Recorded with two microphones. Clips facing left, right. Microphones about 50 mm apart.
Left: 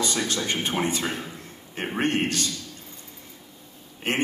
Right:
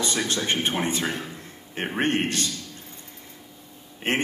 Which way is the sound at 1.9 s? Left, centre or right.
Right.